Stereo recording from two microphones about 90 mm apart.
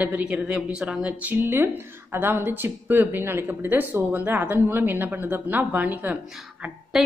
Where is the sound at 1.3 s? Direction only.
25° right (ahead or behind).